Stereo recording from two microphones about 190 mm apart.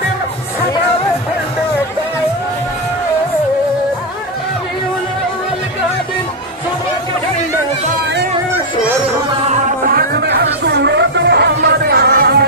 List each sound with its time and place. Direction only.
9.5 s music: 50° right (ahead or behind)